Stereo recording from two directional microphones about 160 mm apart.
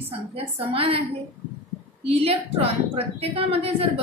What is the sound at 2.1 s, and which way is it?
A woman's voice, 40° right (ahead or behind).